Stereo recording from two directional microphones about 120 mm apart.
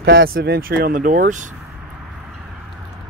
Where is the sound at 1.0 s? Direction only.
90° right.